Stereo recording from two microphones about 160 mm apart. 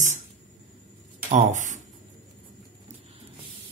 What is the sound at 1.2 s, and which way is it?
Speech, 50° right (ahead or behind).